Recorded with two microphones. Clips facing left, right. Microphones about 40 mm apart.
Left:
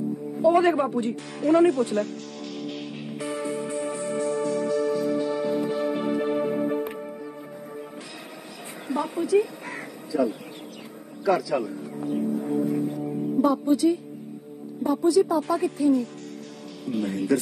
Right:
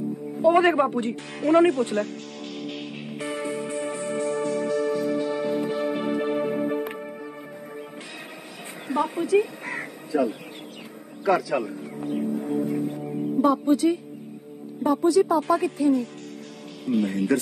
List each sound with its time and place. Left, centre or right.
0.4 s music: right
8.8 s speech: right
12.3 s music: right
13.5 s speech: right